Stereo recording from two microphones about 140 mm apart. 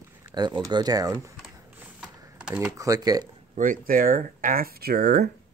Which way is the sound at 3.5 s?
70° right (ahead or behind).